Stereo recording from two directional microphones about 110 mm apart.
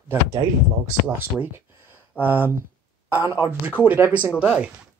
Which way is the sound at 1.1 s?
20° right (ahead or behind).